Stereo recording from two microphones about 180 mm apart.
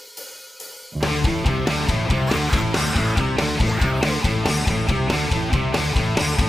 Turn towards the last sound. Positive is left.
turn(degrees=0)  # may be behind; listen again after turning